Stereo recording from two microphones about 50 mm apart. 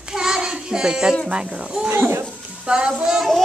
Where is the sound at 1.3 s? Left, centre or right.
Centre.